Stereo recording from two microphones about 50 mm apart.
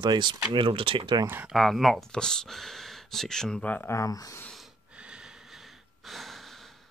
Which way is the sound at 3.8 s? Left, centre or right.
Left.